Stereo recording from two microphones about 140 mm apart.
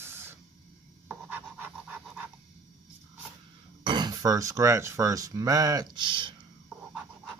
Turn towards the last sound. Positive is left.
turn(degrees=-35)  # may be behind; listen again after turning